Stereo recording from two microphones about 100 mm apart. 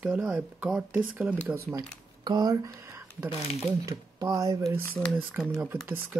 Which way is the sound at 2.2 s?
40° right (ahead or behind).